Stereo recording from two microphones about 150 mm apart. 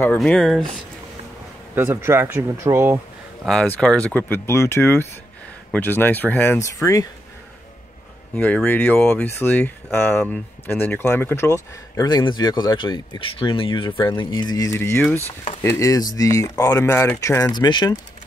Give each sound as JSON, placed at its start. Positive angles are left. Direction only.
{"t": 0.2, "sound": "speech", "side_deg": 0}
{"t": 1.8, "sound": "speech", "side_deg": -15}
{"t": 3.4, "sound": "speech", "side_deg": 10}
{"t": 8.4, "sound": "speech", "side_deg": 10}